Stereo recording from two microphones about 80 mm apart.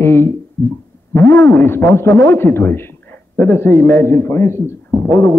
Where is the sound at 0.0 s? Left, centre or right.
Left.